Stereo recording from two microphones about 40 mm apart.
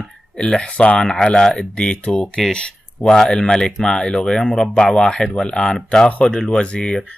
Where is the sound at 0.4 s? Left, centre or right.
Left.